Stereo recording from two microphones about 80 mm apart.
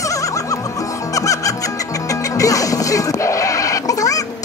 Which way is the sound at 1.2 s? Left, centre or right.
Left.